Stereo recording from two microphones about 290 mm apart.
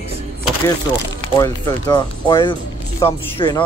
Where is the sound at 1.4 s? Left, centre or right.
Centre.